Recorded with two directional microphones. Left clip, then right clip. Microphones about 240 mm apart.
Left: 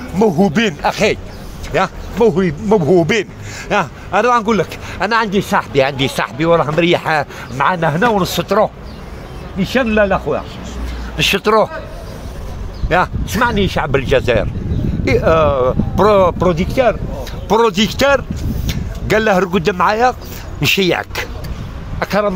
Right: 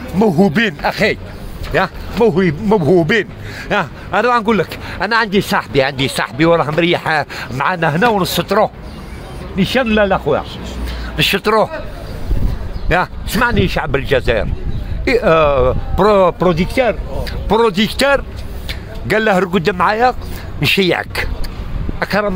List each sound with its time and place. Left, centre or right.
0.2 s a man's voice: centre
3.2 s a man's voice: centre
9.6 s speech: right
11.1 s a man's voice: centre
12.8 s speech: centre
17.5 s speech: centre